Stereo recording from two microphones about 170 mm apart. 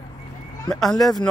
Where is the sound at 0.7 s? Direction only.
5° left (ahead or behind).